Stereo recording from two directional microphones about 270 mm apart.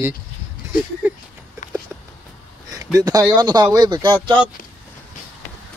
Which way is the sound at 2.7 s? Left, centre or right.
Centre.